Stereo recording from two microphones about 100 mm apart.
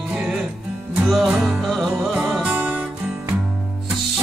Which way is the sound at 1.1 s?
5° right (ahead or behind).